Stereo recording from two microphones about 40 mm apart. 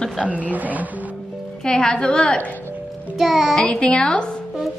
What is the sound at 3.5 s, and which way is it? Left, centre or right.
Speech, left.